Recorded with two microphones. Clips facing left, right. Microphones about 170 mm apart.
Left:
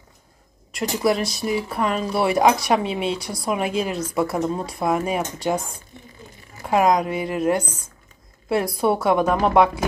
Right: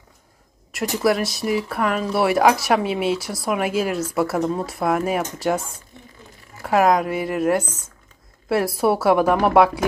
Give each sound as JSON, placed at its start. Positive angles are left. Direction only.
{"t": 0.7, "sound": "speech", "side_deg": 0}
{"t": 6.6, "sound": "speech", "side_deg": -5}